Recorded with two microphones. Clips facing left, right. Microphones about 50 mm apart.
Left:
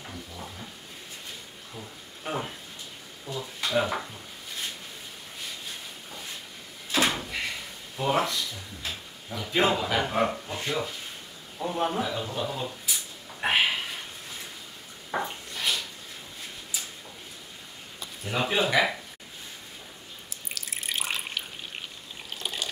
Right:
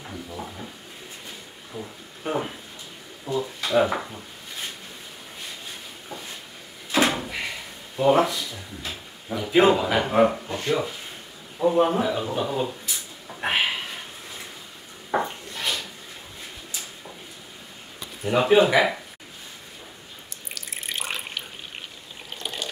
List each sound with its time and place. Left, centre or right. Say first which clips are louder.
1.7 s speech: right 7 dB; centre
2.2 s a sound: right 5 dB; centre
7.2 s door: right 2 dB; centre
8.0 s speech: right 7 dB; centre
12.9 s a sound: right 1 dB; centre
15.2 s dishes: right 1 dB; centre
18.2 s speech: right 9 dB; centre
20.5 s water tap: right 1 dB; centre
22.4 s water: right 1 dB; centre